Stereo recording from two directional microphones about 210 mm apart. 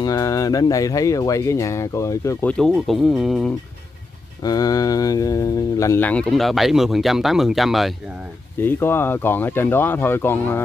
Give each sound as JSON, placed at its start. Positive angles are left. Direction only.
{"t": 0.0, "sound": "speech", "side_deg": 15}
{"t": 2.5, "sound": "speech", "side_deg": 0}
{"t": 4.4, "sound": "speech", "side_deg": 15}
{"t": 8.5, "sound": "speech", "side_deg": 10}